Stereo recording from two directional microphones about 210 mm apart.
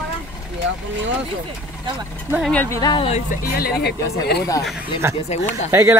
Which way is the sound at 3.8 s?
50° left (ahead or behind).